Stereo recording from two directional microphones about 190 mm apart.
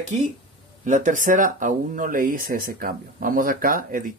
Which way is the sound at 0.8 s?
40° right (ahead or behind).